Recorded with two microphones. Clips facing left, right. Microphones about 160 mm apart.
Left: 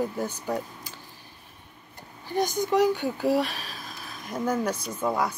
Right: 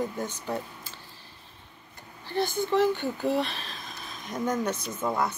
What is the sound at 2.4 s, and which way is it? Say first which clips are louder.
Speech: left 1 dB; 40° left (ahead or behind).